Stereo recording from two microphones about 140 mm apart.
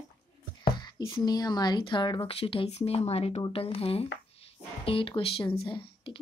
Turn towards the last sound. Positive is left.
turn(degrees=40)  # may be behind; listen again after turning